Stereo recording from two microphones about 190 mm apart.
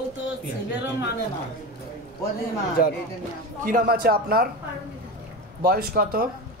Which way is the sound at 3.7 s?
50° right (ahead or behind).